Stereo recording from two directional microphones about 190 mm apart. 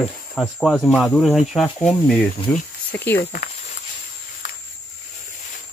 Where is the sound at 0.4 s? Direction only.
Centre (ahead or behind).